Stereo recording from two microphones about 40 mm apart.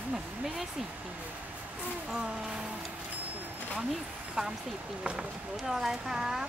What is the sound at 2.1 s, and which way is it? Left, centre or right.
Speech, centre.